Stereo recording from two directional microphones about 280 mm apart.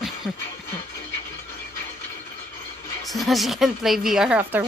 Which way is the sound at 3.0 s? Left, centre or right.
Centre.